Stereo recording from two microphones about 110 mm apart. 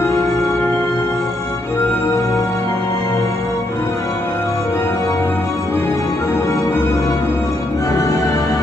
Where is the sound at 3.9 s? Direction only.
30° left (ahead or behind).